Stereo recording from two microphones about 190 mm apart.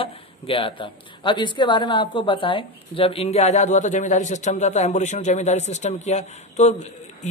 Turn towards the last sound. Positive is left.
turn(degrees=35)  # may be behind; listen again after turning